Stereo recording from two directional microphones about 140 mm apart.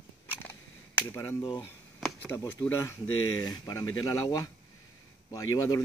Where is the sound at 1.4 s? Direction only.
35° left (ahead or behind).